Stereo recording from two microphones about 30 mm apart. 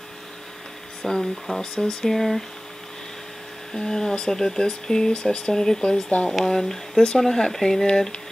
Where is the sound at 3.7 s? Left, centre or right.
Centre.